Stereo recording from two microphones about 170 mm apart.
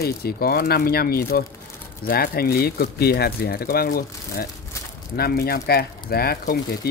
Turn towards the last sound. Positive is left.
turn(degrees=65)  # may be behind; listen again after turning